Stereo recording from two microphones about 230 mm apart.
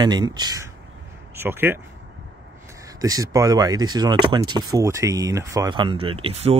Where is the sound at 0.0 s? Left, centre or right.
Centre.